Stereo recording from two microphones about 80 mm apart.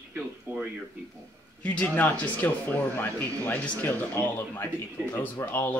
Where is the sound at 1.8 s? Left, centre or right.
Left.